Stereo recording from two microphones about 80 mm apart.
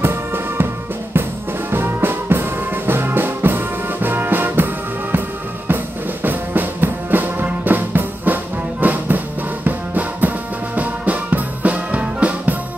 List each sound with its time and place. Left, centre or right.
0.0 s music: right
1.7 s music: right
6.2 s music: right